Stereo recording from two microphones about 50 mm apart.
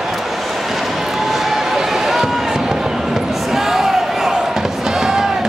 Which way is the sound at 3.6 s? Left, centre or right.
Centre.